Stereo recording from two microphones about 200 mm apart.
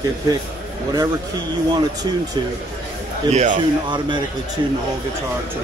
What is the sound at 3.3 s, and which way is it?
Speech, 40° right (ahead or behind).